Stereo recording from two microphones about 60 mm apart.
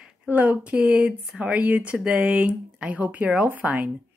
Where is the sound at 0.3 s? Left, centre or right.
Right.